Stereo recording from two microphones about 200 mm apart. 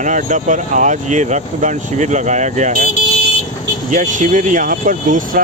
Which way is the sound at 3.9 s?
40° right (ahead or behind).